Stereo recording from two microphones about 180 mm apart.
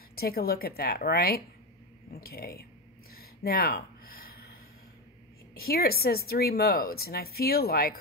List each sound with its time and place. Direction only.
0.1 s speech: 60° left (ahead or behind)
3.2 s a sound: 55° left (ahead or behind)
5.6 s speech: 55° left (ahead or behind)